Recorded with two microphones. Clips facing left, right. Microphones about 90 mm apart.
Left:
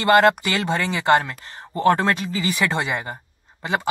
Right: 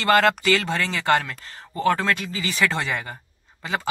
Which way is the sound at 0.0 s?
20° left (ahead or behind).